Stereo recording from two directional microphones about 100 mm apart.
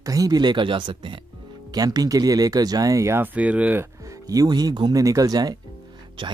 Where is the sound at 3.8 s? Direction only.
35° right (ahead or behind).